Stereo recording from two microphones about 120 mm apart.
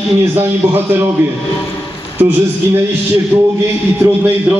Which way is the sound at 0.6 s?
20° right (ahead or behind).